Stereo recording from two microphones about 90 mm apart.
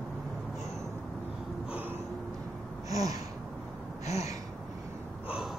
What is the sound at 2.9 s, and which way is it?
Gasp, 40° right (ahead or behind).